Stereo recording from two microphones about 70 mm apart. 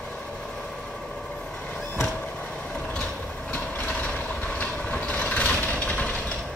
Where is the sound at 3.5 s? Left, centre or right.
Left.